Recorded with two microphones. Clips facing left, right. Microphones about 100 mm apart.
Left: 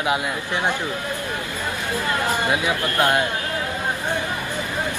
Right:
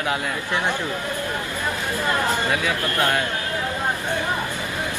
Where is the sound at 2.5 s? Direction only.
20° left (ahead or behind).